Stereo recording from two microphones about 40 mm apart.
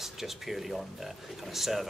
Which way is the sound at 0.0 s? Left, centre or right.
Centre.